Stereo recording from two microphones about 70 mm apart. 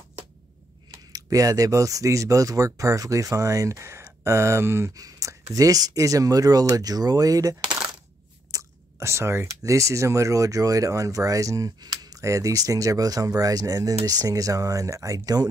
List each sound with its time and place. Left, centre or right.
1.1 s speech: right
4.9 s speech: right
8.5 s a sound: right
9.0 s speech: right
11.8 s speech: right
12.2 s speech: right